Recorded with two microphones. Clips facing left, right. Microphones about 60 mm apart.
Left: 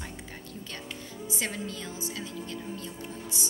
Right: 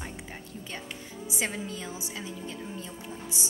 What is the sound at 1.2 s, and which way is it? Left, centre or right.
A woman's voice, centre.